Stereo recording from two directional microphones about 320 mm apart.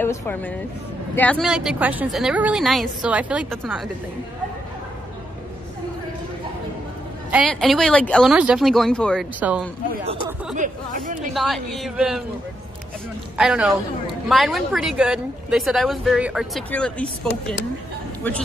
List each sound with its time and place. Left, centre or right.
0.0 s a woman's voice: centre
7.2 s speech: centre
10.0 s speech: right
11.3 s speech: centre
13.4 s speech: centre